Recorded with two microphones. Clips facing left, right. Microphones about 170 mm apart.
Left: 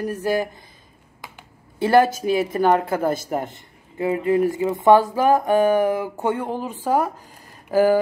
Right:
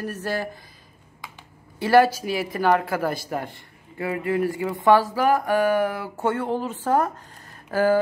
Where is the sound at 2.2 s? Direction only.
25° left (ahead or behind).